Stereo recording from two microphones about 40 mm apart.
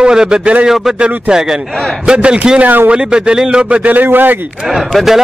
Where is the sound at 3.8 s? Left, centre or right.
Right.